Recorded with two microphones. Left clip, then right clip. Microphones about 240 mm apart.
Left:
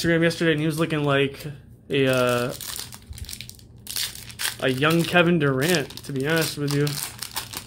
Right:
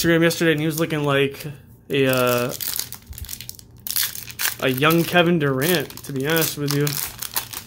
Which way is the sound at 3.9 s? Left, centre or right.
Centre.